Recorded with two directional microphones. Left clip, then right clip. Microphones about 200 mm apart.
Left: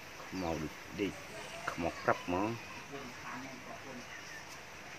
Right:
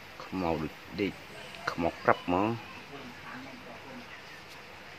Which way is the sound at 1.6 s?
30° right (ahead or behind).